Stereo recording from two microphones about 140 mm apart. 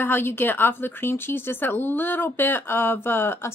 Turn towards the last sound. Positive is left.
turn(degrees=15)  # may be behind; listen again after turning